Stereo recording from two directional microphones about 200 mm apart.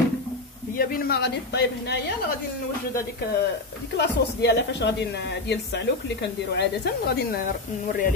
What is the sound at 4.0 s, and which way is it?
Speech, 60° left (ahead or behind).